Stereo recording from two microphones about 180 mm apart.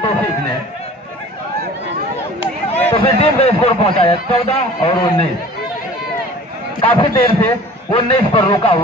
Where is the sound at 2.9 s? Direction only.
30° left (ahead or behind).